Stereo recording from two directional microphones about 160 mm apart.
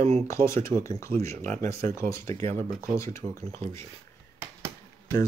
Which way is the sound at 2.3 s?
45° right (ahead or behind).